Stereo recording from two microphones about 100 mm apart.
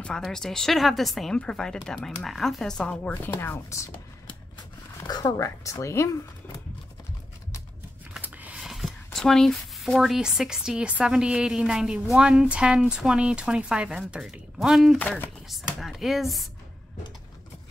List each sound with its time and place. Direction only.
0.0 s speech: 5° left (ahead or behind)
3.3 s chopping: 25° left (ahead or behind)
5.2 s speech: 35° left (ahead or behind)
8.2 s a sound: 15° right (ahead or behind)
8.5 s speech: 5° right (ahead or behind)
15.0 s speech: 15° left (ahead or behind)
15.4 s speech: centre (ahead or behind)